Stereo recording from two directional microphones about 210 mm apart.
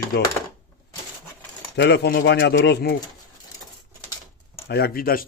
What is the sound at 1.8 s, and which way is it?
A man's voice, 55° left (ahead or behind).